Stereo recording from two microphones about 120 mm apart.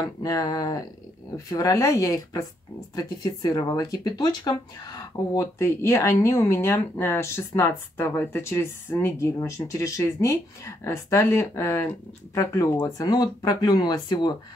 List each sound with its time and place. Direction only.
0.0 s speech: 30° left (ahead or behind)